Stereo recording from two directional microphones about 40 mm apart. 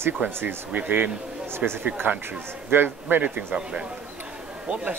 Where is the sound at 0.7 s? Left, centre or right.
Right.